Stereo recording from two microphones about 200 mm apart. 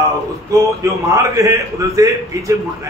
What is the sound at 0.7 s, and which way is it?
A man's voice, 15° right (ahead or behind).